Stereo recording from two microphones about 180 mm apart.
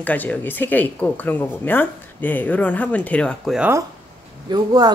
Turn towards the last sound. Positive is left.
turn(degrees=-20)  # may be behind; listen again after turning